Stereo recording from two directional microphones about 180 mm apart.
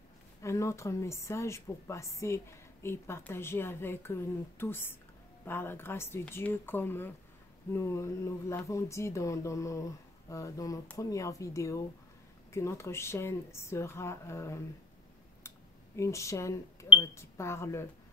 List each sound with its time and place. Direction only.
0.4 s a woman's voice: 15° left (ahead or behind)
16.0 s a woman's voice: 15° left (ahead or behind)